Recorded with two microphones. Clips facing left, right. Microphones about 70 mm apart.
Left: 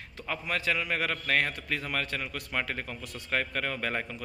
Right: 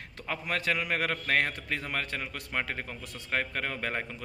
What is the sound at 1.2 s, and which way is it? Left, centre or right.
A man's voice, right.